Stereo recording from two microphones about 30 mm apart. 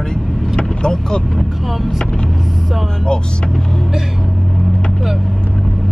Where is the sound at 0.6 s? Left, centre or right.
Left.